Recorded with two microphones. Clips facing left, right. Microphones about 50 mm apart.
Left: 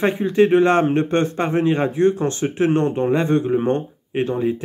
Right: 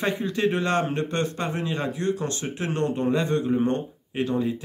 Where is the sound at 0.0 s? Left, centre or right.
Left.